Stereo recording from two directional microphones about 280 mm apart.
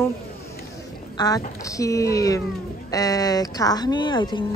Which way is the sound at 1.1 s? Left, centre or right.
Centre.